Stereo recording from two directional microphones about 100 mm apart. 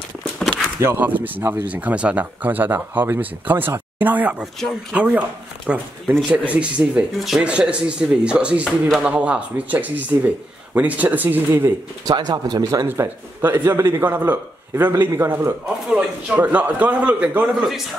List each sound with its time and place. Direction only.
0.7 s speech: 25° right (ahead or behind)
8.8 s speech: centre (ahead or behind)
9.1 s speech: 10° right (ahead or behind)
12.0 s speech: 40° right (ahead or behind)
12.8 s a man's voice: 25° right (ahead or behind)